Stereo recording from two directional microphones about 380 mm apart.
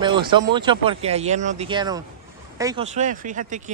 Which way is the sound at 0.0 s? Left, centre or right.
Centre.